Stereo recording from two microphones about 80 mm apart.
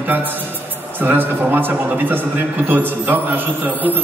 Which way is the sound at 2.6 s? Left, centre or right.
Right.